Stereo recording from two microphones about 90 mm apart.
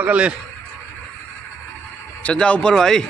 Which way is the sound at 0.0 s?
15° right (ahead or behind).